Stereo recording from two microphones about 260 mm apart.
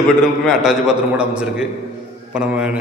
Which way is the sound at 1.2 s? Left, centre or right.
Centre.